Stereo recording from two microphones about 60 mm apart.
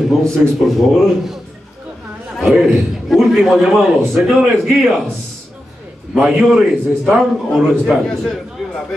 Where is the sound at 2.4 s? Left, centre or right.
Centre.